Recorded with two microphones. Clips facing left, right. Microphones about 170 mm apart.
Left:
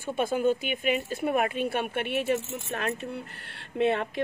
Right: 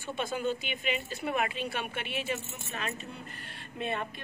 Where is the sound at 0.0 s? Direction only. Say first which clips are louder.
Left 7 dB; 50° left (ahead or behind).